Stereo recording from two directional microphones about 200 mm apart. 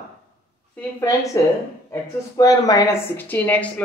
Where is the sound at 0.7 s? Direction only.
15° left (ahead or behind).